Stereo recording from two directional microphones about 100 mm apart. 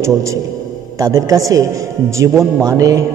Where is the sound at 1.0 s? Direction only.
35° right (ahead or behind).